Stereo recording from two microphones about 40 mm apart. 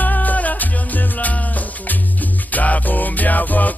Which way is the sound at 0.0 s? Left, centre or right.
Left.